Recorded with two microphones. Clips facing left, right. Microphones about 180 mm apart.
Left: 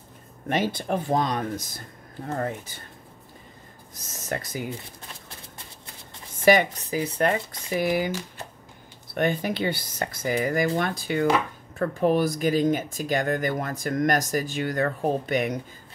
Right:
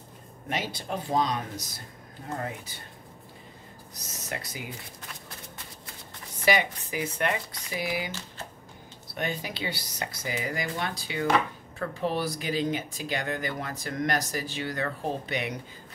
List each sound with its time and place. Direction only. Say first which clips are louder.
0.5 s speech: left 7 dB; 50° left (ahead or behind)
3.9 s speech: left 6 dB; 50° left (ahead or behind)
6.4 s speech: left 7 dB; 45° left (ahead or behind)
7.0 s speech: left 5 dB; 35° left (ahead or behind)
9.1 s speech: left 8 dB; 55° left (ahead or behind)